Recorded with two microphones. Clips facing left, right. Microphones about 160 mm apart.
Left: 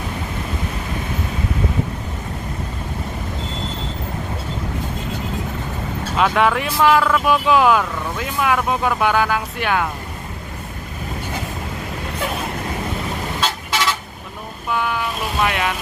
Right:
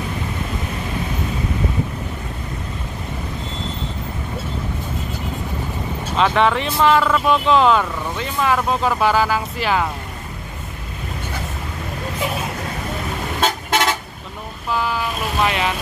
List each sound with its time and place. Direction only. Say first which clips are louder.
6.1 s speech: even; 5° left (ahead or behind)
13.4 s vehicle: right 5 dB; 50° right (ahead or behind)
14.8 s speech: even; centre (ahead or behind)